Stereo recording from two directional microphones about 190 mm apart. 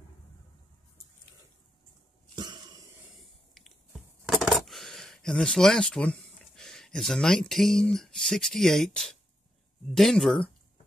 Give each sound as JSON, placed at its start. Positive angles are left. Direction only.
{"t": 2.3, "sound": "cough", "side_deg": -25}
{"t": 3.2, "sound": "a sound", "side_deg": 0}
{"t": 9.9, "sound": "speech", "side_deg": 0}